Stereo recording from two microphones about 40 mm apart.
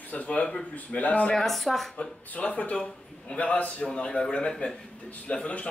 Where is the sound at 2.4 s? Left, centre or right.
Left.